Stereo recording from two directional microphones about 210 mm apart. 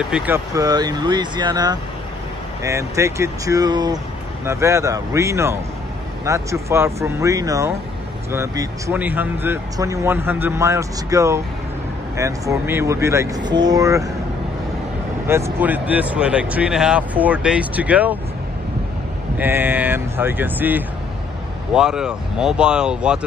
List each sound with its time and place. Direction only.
0.1 s speech: 10° right (ahead or behind)
15.2 s speech: 10° right (ahead or behind)
19.3 s speech: 10° right (ahead or behind)